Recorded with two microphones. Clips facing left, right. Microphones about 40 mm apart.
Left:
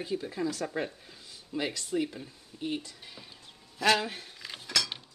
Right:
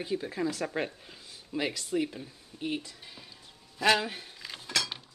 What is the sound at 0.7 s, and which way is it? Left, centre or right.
Speech, right.